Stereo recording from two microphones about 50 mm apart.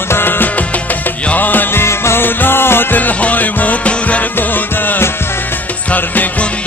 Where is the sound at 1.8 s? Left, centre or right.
Left.